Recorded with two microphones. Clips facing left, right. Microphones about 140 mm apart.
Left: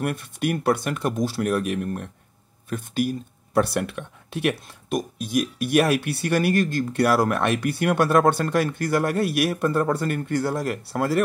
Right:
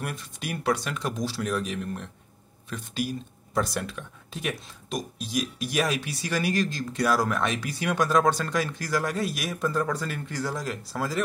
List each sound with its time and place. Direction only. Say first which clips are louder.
0.0 s speech: left 9 dB; 60° left (ahead or behind)